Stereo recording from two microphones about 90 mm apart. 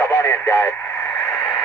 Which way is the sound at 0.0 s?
30° left (ahead or behind).